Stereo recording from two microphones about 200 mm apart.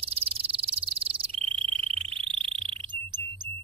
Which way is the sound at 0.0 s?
30° right (ahead or behind).